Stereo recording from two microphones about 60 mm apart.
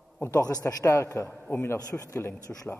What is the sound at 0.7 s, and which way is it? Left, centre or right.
Speech, left.